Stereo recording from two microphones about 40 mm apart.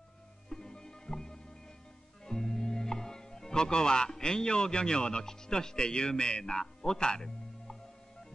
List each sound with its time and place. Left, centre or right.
0.5 s music: centre
5.2 s speech: centre